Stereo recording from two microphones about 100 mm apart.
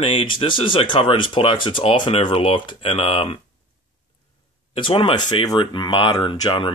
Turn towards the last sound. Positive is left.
turn(degrees=60)  # may be behind; listen again after turning